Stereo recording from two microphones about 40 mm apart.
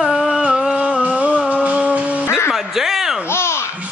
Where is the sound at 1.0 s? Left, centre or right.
Right.